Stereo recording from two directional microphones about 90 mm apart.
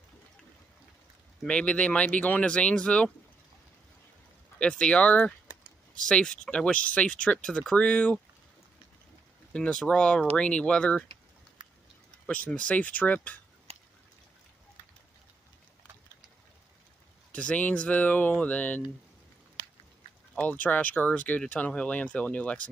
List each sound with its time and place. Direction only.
1.4 s speech: 10° left (ahead or behind)
4.6 s speech: 10° left (ahead or behind)
9.5 s speech: 10° left (ahead or behind)
12.3 s speech: 15° left (ahead or behind)
17.3 s speech: 15° left (ahead or behind)
20.3 s speech: 15° left (ahead or behind)